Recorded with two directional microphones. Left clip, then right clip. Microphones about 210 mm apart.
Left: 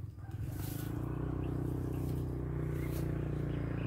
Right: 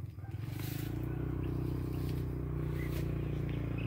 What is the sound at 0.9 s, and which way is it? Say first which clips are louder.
Vehicle: left 2 dB; 40° left (ahead or behind).